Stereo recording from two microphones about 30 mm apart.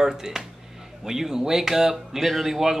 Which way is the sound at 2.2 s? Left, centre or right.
Centre.